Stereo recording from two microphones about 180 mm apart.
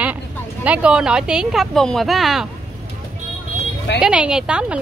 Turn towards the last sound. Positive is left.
turn(degrees=-5)  # may be behind; listen again after turning